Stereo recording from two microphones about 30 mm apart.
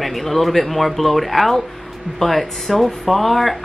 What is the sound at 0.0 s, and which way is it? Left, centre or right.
Speech, centre.